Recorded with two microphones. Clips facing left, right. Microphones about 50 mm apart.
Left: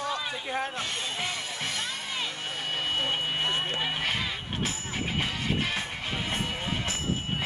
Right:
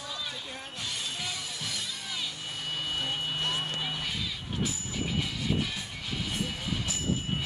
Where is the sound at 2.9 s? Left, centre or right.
Left.